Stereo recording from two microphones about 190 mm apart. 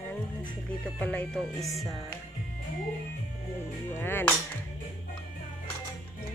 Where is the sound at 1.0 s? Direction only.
10° left (ahead or behind).